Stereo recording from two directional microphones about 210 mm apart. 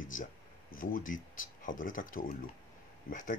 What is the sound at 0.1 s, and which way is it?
Speech, 40° left (ahead or behind).